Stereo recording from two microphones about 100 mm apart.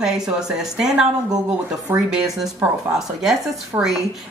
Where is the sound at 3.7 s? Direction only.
40° right (ahead or behind).